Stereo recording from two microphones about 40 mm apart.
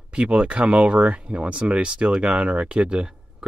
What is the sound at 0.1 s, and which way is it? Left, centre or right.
Speech, right.